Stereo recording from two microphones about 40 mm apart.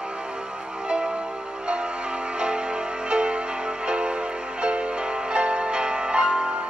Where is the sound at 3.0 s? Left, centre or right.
Right.